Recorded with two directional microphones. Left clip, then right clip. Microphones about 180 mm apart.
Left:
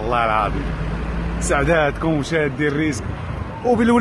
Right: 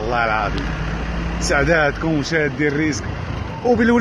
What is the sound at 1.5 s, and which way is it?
Speech, 15° left (ahead or behind).